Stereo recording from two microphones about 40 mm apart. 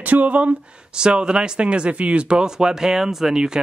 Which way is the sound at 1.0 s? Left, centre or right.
Right.